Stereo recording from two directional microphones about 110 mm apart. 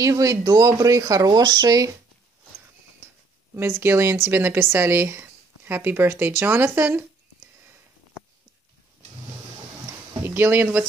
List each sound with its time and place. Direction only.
0.0 s speech: 30° right (ahead or behind)
3.8 s speech: 20° right (ahead or behind)
10.2 s speech: 20° right (ahead or behind)